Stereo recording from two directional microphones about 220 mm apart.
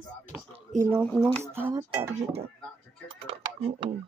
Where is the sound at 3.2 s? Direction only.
25° right (ahead or behind).